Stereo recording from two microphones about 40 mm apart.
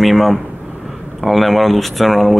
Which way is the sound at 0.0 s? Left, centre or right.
Centre.